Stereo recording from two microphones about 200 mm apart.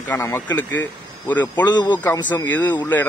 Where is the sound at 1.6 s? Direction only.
20° left (ahead or behind).